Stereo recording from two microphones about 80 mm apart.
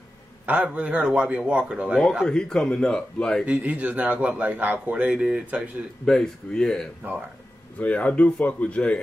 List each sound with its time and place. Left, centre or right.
0.5 s a man's voice: centre
2.2 s speech: centre
3.4 s a man's voice: centre
6.0 s speech: centre